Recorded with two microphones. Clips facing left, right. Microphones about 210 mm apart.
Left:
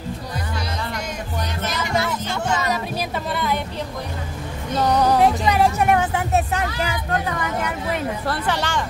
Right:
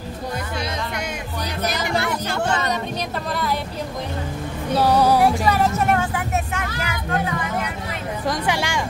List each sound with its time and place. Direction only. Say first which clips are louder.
1.7 s music: even; 60° right (ahead or behind)
4.7 s music: right 1 dB; 5° right (ahead or behind)
5.2 s music: left 1 dB; 20° left (ahead or behind)
6.3 s vehicle: left 4 dB; 35° left (ahead or behind)
8.3 s a sound: right 3 dB; 10° right (ahead or behind)